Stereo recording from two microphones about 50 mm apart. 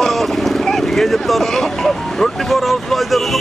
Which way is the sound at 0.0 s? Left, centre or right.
Centre.